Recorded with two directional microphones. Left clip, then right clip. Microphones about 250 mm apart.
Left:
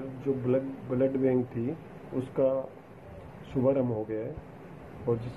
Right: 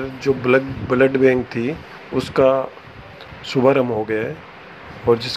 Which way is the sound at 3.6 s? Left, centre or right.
Right.